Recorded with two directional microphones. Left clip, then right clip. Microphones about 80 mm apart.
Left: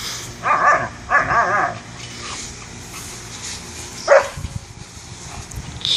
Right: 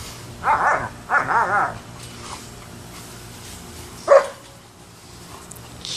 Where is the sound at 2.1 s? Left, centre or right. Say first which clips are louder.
Left 5 dB; right.